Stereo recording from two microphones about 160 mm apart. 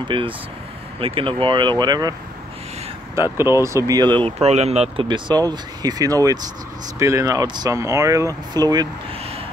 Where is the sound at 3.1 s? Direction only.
15° right (ahead or behind).